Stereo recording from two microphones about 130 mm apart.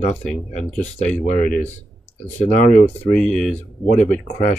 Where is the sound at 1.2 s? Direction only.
85° left.